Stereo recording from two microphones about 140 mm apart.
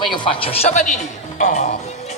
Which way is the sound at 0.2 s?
40° left (ahead or behind).